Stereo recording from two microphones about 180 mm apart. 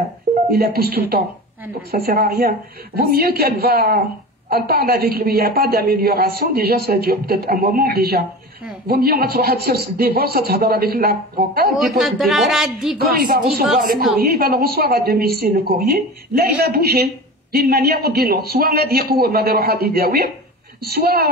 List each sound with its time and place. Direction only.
0.5 s a woman's voice: 60° right (ahead or behind)
11.7 s speech: centre (ahead or behind)
12.9 s a woman's voice: 55° right (ahead or behind)